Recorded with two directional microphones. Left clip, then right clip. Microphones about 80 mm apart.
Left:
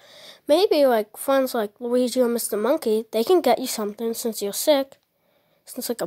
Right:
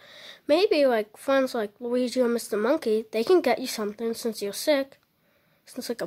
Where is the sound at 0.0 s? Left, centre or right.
Left.